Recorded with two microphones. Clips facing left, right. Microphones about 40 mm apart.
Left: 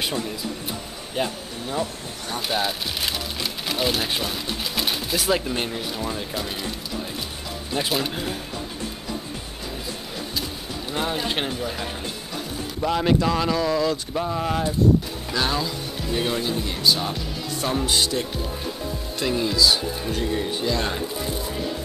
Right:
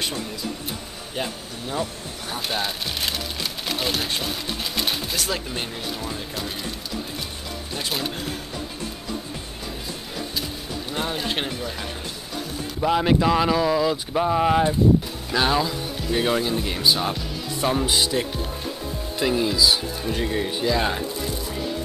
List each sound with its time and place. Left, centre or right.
1.1 s speech: centre
7.9 s speech: centre
10.9 s speech: centre
12.8 s speech: centre